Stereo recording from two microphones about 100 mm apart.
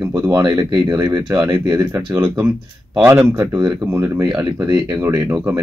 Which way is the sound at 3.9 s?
25° right (ahead or behind).